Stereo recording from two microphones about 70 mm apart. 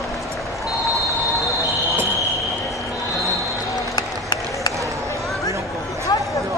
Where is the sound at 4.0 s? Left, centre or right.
Left.